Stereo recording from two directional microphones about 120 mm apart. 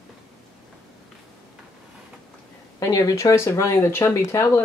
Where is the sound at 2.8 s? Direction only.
30° left (ahead or behind).